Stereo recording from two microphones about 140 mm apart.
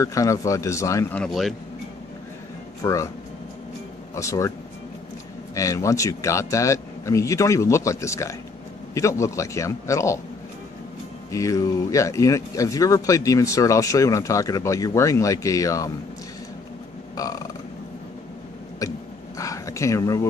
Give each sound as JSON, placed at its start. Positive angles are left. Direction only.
{"t": 0.0, "sound": "speech", "side_deg": 25}
{"t": 1.1, "sound": "a man's voice", "side_deg": 5}
{"t": 2.8, "sound": "speech", "side_deg": 20}
{"t": 4.1, "sound": "speech", "side_deg": 20}
{"t": 11.3, "sound": "speech", "side_deg": 20}
{"t": 17.2, "sound": "burping", "side_deg": 25}
{"t": 18.8, "sound": "a sound", "side_deg": 25}